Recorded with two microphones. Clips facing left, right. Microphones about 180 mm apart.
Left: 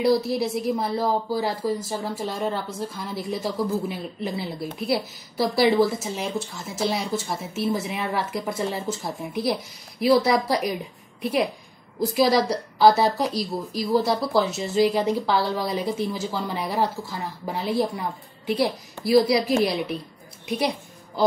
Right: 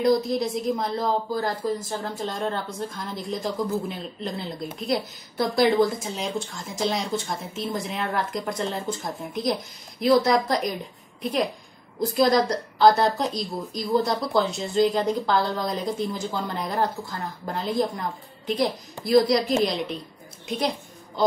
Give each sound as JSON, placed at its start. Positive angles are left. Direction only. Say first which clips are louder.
{"t": 0.0, "sound": "a woman's voice", "louder": "even", "side_deg": 5}
{"t": 12.1, "sound": "a woman's voice", "louder": "even", "side_deg": 5}
{"t": 19.0, "sound": "a woman's voice", "louder": "left 1 dB", "side_deg": 5}